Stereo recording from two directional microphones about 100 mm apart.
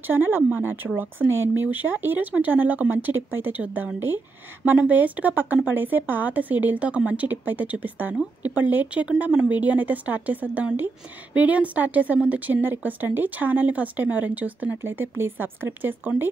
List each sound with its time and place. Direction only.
0.0 s speech: 20° right (ahead or behind)